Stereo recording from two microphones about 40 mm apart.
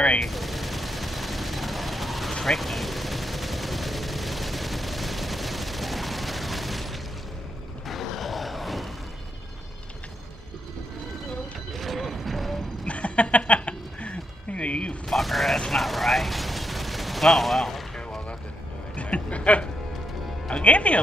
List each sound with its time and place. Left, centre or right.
0.2 s fusillade: centre
2.4 s vehicle: centre
7.9 s a sound: centre
11.7 s mechanisms: centre
12.8 s a sound: left
15.0 s mechanisms: centre
15.7 s gunshot: centre
18.9 s a sound: left
20.4 s music: left